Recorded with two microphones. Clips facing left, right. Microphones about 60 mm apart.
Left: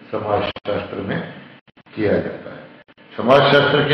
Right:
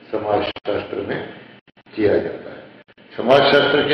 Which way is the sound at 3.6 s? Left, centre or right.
Left.